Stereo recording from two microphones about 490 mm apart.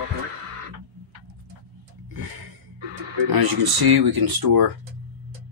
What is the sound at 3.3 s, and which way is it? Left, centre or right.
Speech, right.